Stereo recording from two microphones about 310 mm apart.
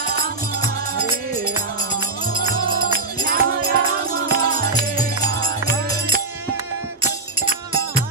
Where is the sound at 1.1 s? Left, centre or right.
Right.